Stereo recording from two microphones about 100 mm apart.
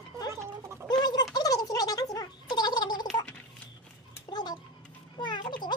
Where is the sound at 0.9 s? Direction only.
45° left (ahead or behind).